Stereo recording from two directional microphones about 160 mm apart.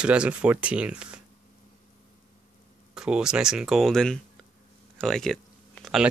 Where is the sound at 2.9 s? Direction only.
5° right (ahead or behind).